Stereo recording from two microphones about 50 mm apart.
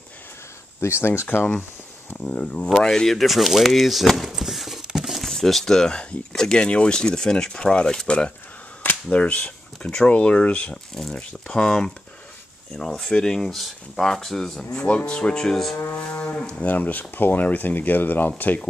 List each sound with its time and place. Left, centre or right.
0.7 s speech: left
2.1 s speech: left
2.7 s speech: centre
4.3 s a sound: centre
5.3 s speech: centre
9.1 s speech: left
10.7 s speech: centre
11.1 s speech: left
14.8 s speech: left
16.1 s cattle: left
16.7 s speech: left